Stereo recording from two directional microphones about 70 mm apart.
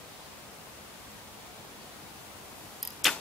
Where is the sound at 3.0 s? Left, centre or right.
Centre.